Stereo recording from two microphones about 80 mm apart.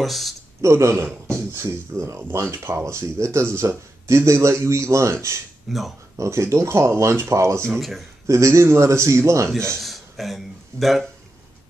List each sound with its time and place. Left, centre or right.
0.0 s speech: centre
0.6 s a man's voice: right
5.7 s speech: centre
6.1 s a man's voice: right
7.7 s speech: centre
8.3 s a man's voice: right
9.8 s speech: centre